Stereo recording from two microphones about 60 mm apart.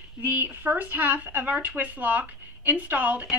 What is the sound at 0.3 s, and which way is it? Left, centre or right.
Speech, right.